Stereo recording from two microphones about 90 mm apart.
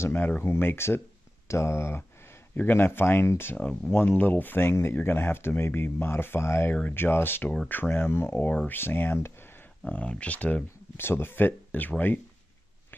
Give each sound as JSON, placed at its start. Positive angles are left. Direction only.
{"t": 0.0, "sound": "speech", "side_deg": 25}
{"t": 3.5, "sound": "speech", "side_deg": 15}
{"t": 8.3, "sound": "speech", "side_deg": 15}